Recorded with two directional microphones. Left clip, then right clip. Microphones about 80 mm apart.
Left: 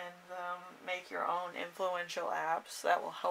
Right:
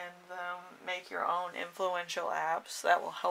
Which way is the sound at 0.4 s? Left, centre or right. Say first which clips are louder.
Right 2 dB; right.